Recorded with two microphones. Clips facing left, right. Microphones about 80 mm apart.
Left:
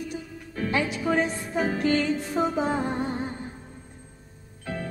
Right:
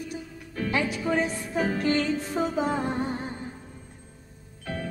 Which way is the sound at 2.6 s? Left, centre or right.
Centre.